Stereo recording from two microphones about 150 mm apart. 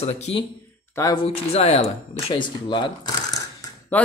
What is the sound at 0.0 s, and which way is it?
Speech, 45° left (ahead or behind).